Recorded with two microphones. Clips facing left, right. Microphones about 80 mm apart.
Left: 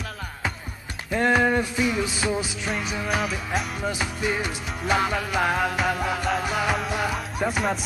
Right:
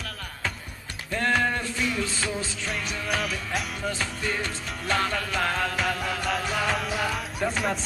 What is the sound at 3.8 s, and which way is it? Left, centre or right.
Music, centre.